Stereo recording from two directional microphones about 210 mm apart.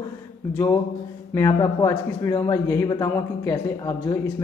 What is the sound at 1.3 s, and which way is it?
Speech, 15° left (ahead or behind).